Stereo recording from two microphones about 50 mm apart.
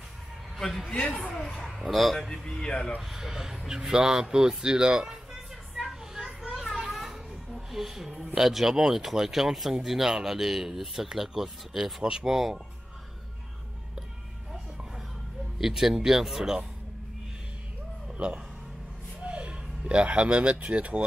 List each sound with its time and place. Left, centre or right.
0.6 s speech: centre
1.3 s speech: centre
1.7 s speech: centre
3.0 s speech: centre
5.8 s children playing: centre
8.4 s speech: centre
12.0 s speech: centre
15.6 s speech: centre
18.1 s music: right
19.2 s speech: right